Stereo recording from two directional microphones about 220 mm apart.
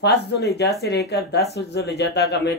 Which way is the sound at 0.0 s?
50° left (ahead or behind).